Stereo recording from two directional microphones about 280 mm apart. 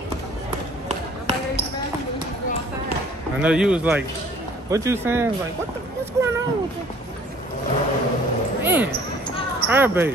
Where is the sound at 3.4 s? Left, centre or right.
Centre.